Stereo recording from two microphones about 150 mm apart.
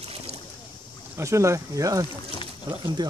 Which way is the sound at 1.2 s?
20° right (ahead or behind).